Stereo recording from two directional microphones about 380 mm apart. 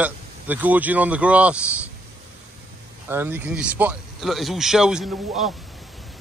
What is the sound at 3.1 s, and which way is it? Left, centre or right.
Speech, centre.